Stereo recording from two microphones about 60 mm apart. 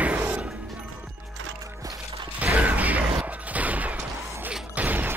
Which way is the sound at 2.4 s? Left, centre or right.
Right.